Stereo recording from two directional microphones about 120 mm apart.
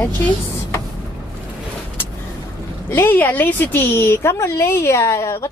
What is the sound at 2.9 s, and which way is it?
A woman's voice, 15° left (ahead or behind).